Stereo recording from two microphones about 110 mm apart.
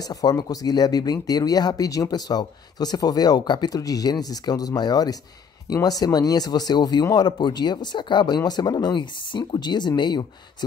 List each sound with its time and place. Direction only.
0.0 s speech: 35° left (ahead or behind)